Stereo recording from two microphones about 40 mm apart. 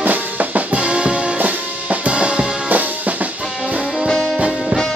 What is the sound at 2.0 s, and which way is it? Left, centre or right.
Music, right.